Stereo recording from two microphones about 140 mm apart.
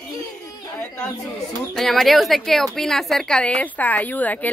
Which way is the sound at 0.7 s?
15° left (ahead or behind).